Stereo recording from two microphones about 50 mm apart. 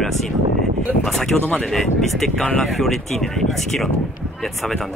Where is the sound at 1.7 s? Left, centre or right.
Centre.